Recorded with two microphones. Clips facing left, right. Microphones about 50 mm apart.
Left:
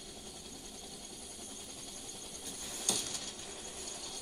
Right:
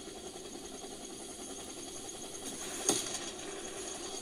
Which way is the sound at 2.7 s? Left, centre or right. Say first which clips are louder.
Right 5 dB; right.